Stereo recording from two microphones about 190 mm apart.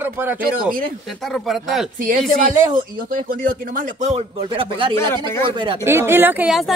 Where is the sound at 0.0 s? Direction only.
10° right (ahead or behind).